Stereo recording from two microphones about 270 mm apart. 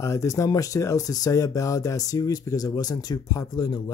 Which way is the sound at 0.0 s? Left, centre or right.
Centre.